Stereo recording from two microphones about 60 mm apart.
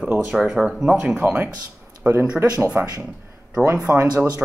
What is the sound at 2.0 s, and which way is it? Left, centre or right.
Speech, centre.